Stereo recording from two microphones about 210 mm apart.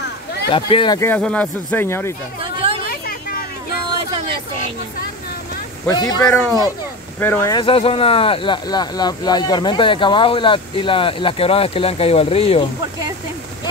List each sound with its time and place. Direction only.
0.5 s speech: 25° left (ahead or behind)
5.9 s speech: 20° left (ahead or behind)
7.6 s speech: 25° left (ahead or behind)